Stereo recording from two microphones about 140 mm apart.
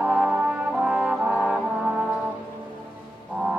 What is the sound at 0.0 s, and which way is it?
Brass instrument, 10° right (ahead or behind).